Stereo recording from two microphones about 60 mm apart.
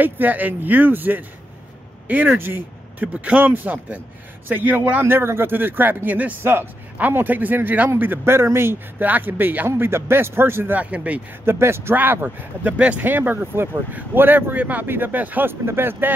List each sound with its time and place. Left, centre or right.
0.0 s speech: right
5.0 s speech: right
6.4 s speech: right
9.0 s speech: right
9.7 s speech: right
10.8 s speech: right
11.4 s speech: right
11.9 s speech: right
12.7 s speech: centre
13.0 s speech: right
15.6 s speech: right